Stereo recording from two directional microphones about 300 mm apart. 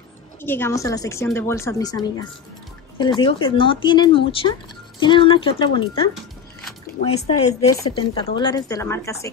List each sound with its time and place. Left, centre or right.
0.4 s a woman's voice: centre
7.2 s a woman's voice: centre